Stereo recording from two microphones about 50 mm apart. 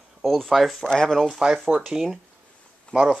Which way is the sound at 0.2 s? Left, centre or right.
Centre.